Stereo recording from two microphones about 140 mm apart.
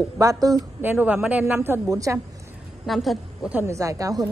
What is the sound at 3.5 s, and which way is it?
Speech, 15° right (ahead or behind).